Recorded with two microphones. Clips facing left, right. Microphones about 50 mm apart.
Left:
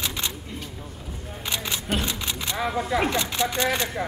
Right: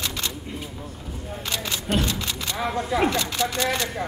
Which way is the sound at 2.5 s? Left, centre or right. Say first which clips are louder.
Even; centre.